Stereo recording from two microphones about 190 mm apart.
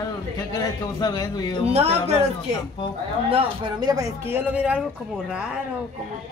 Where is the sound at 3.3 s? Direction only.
25° right (ahead or behind).